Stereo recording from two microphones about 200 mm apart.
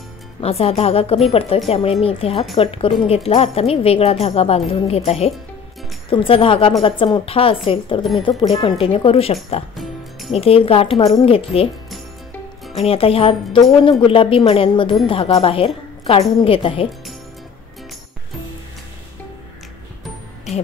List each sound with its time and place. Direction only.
0.4 s speech: 30° left (ahead or behind)
12.7 s speech: 30° left (ahead or behind)